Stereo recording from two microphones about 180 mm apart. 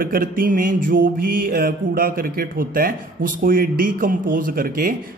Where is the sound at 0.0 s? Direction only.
50° right (ahead or behind).